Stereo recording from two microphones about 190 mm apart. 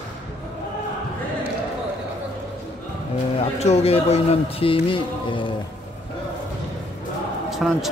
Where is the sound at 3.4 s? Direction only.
35° left (ahead or behind).